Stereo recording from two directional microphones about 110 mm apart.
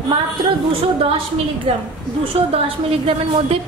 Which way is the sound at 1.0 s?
55° right (ahead or behind).